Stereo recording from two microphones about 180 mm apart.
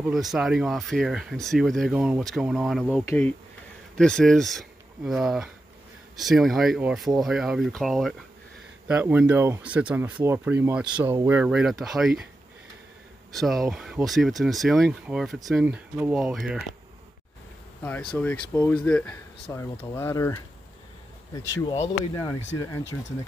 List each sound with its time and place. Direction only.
0.1 s speech: centre (ahead or behind)
13.3 s speech: centre (ahead or behind)
17.8 s speech: 10° left (ahead or behind)
19.5 s speech: 20° left (ahead or behind)
21.8 s speech: 20° left (ahead or behind)